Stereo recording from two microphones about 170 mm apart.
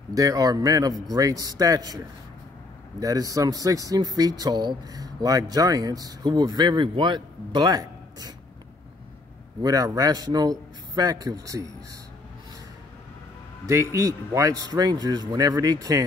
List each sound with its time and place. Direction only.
0.1 s speech: 20° right (ahead or behind)
3.0 s speech: 20° right (ahead or behind)
9.6 s speech: 20° right (ahead or behind)
13.7 s speech: 20° right (ahead or behind)